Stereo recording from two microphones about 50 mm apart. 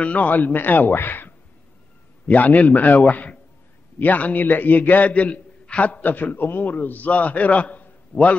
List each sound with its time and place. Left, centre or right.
0.0 s a man's voice: left